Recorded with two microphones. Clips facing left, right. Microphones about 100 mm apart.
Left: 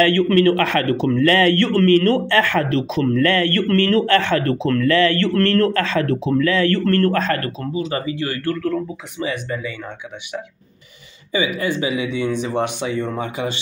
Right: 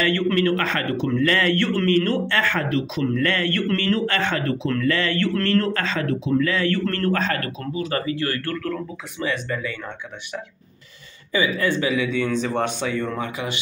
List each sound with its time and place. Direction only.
0.0 s speech: 60° left (ahead or behind); by 7.5 s 45° left (ahead or behind)
7.7 s speech: 20° left (ahead or behind)
11.3 s speech: 20° left (ahead or behind)